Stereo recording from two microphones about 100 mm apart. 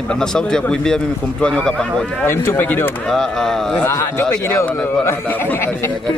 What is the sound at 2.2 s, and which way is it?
Speech, 25° left (ahead or behind).